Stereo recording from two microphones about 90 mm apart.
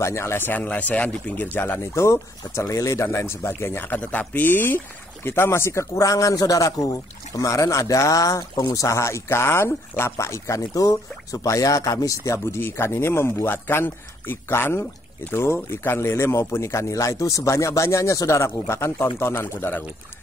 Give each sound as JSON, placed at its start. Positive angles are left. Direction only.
{"t": 0.0, "sound": "speech", "side_deg": 30}